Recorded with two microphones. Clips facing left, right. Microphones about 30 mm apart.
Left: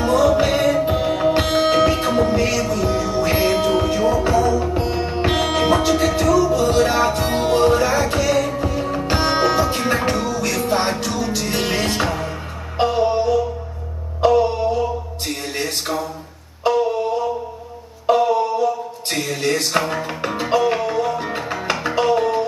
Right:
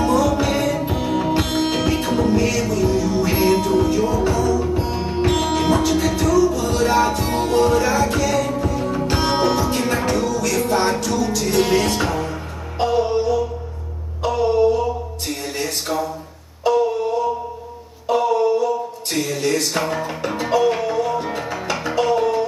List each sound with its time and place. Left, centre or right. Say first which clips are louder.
0.0 s music: left 2 dB; centre
16.6 s a sound: even; centre
18.1 s mantra: even; centre
19.9 s music: even; centre